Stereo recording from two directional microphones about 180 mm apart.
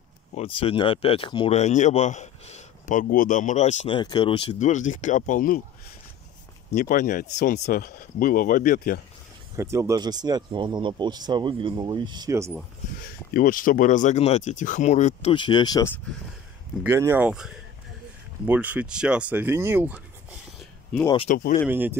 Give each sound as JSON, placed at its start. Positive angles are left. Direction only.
{"t": 0.3, "sound": "speech", "side_deg": 30}
{"t": 3.8, "sound": "speech", "side_deg": 25}
{"t": 4.6, "sound": "speech", "side_deg": 45}
{"t": 6.7, "sound": "speech", "side_deg": 45}
{"t": 9.6, "sound": "speech", "side_deg": -15}
{"t": 13.3, "sound": "speech", "side_deg": 50}
{"t": 15.3, "sound": "speech", "side_deg": 25}
{"t": 16.8, "sound": "speech", "side_deg": -15}
{"t": 20.9, "sound": "speech", "side_deg": 0}
{"t": 21.3, "sound": "speech", "side_deg": 50}
{"t": 21.6, "sound": "speech", "side_deg": -10}